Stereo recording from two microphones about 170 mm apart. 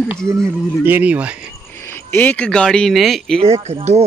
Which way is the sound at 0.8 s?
10° right (ahead or behind).